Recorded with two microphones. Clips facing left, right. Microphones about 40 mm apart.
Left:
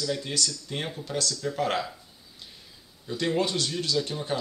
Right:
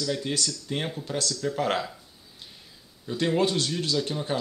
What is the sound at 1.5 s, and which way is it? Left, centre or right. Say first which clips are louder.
Speech: even; right.